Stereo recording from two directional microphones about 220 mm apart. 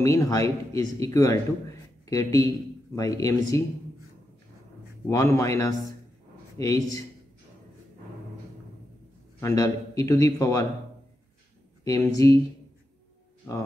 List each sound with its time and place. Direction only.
0.0 s a man's voice: 15° left (ahead or behind)
5.0 s a man's voice: 15° left (ahead or behind)
9.4 s a man's voice: 15° left (ahead or behind)
11.8 s speech: 15° left (ahead or behind)
13.5 s a man's voice: 15° left (ahead or behind)